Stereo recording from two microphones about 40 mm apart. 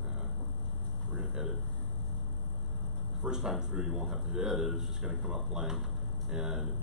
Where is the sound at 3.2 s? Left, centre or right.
Centre.